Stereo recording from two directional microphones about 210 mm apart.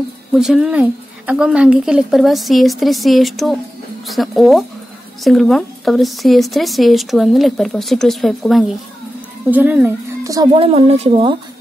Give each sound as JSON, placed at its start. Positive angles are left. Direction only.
{"t": 0.3, "sound": "speech", "side_deg": 0}